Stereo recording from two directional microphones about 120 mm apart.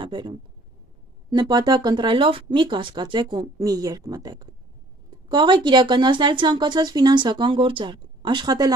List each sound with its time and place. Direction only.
0.0 s a woman's voice: 40° right (ahead or behind)